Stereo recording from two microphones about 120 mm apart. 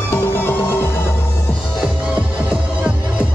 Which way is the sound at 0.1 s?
20° left (ahead or behind).